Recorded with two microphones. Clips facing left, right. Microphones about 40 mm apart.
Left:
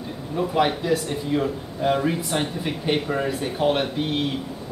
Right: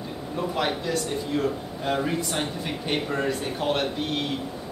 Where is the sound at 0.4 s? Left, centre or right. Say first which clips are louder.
Left 5 dB; centre.